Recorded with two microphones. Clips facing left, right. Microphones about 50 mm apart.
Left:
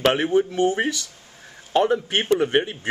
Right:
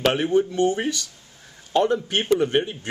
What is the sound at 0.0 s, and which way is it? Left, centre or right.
A man's voice, centre.